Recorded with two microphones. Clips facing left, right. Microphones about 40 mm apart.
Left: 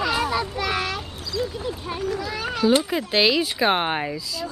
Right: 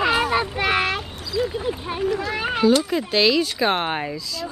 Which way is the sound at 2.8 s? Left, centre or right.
Centre.